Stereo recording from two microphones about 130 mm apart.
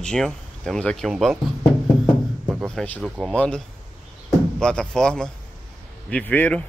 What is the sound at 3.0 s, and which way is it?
Speech, centre (ahead or behind).